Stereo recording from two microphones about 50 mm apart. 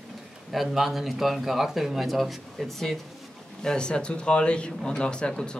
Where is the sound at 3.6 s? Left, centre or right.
Centre.